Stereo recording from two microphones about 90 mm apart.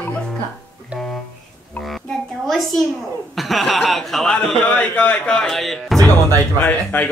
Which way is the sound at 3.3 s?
Centre (ahead or behind).